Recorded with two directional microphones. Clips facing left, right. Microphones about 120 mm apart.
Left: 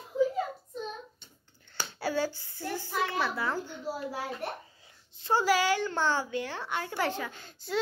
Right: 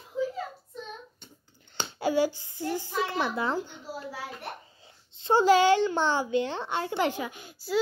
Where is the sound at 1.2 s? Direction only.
50° right (ahead or behind).